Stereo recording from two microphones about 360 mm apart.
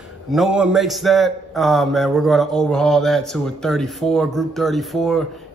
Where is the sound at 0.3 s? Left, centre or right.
Centre.